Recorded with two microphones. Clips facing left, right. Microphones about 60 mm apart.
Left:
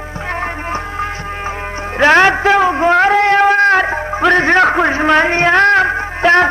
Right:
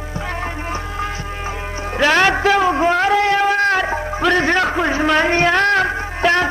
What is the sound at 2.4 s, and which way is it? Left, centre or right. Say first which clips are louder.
Music: left 3 dB; left.